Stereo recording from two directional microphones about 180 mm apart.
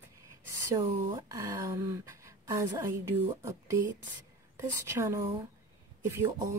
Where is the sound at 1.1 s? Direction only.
20° right (ahead or behind).